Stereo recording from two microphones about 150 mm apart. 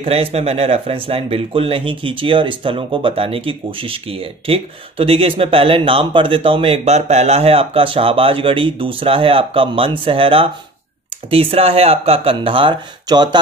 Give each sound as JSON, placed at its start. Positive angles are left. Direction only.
{"t": 0.0, "sound": "speech", "side_deg": -40}